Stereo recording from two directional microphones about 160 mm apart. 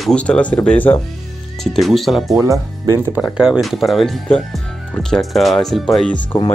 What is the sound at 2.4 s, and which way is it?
Speech, 20° right (ahead or behind).